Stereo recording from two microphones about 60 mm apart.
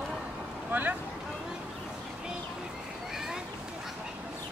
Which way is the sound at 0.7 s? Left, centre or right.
Right.